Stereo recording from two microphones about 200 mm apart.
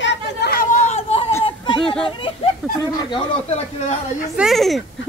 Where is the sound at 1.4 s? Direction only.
25° left (ahead or behind).